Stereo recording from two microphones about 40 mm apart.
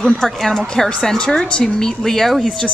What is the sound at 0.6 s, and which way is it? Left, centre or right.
Speech, centre.